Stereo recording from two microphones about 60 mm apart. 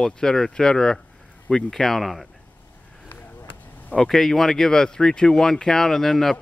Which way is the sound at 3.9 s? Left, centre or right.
Centre.